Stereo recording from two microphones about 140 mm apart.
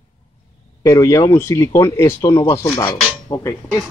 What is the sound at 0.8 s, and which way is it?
Speech, 25° left (ahead or behind).